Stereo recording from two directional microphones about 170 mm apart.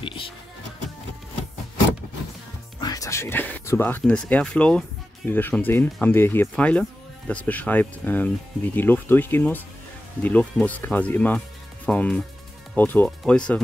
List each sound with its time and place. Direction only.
0.0 s music: 30° left (ahead or behind)
2.8 s speech: 20° left (ahead or behind)